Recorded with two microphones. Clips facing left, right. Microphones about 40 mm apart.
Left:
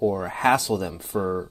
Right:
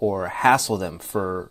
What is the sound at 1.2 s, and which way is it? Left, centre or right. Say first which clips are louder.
Speech: even; centre.